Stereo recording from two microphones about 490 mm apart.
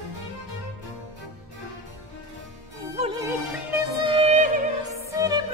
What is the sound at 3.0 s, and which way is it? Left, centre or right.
Music, centre.